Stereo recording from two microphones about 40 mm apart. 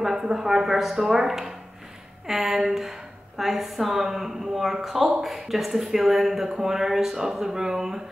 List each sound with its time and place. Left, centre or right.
0.0 s a woman's voice: centre